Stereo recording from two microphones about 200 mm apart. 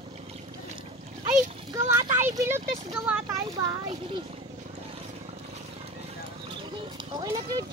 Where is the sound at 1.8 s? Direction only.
10° right (ahead or behind).